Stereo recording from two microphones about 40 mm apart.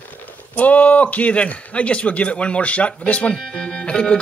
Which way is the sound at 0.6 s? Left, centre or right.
Left.